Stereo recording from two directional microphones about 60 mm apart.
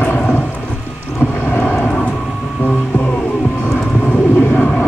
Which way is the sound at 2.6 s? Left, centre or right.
Left.